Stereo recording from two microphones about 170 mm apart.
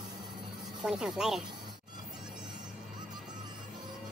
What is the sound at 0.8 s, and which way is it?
Speech, 5° right (ahead or behind).